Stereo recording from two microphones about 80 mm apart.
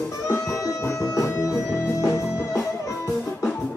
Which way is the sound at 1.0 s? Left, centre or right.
Left.